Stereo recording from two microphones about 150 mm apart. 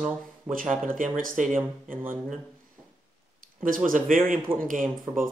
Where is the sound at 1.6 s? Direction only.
15° right (ahead or behind).